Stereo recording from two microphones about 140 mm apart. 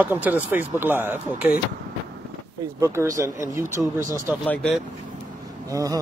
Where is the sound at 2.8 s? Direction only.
20° right (ahead or behind).